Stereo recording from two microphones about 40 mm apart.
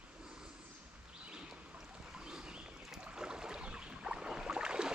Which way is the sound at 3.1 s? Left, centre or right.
Right.